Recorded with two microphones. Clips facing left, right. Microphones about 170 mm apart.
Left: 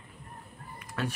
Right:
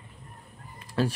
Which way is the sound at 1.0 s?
30° right (ahead or behind).